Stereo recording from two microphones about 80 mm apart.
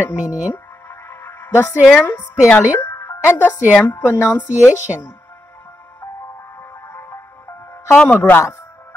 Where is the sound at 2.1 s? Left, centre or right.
Left.